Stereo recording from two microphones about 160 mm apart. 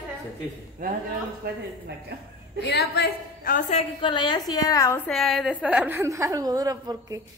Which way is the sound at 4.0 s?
30° left (ahead or behind).